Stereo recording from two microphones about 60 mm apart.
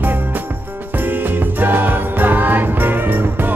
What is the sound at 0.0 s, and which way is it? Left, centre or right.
Jingle bell, right.